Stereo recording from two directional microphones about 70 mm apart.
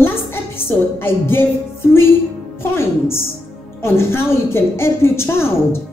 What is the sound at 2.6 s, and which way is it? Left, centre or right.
A woman's voice, left.